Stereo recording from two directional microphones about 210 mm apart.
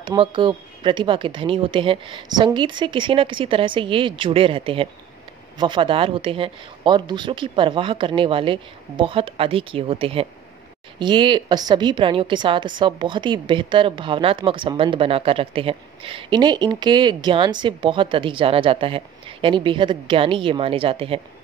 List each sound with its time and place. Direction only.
0.0 s a woman's voice: 25° right (ahead or behind)